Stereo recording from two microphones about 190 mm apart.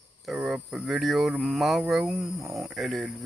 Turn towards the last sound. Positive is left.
turn(degrees=0)  # may be behind; listen again after turning